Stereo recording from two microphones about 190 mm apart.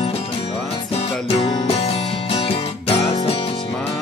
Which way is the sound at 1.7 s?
30° left (ahead or behind).